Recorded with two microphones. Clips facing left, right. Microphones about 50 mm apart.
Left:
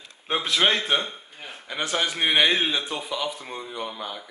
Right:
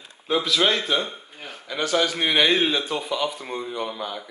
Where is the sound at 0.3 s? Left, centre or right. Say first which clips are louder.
Right 1 dB; left.